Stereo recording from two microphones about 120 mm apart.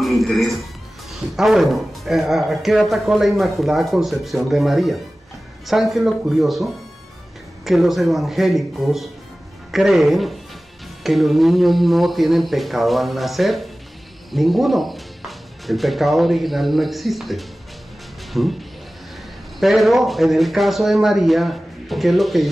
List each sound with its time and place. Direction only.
0.0 s a man's voice: centre (ahead or behind)